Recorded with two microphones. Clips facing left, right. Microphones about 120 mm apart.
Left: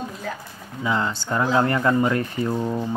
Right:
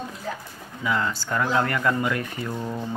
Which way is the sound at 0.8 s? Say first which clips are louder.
Left 2 dB; 25° left (ahead or behind).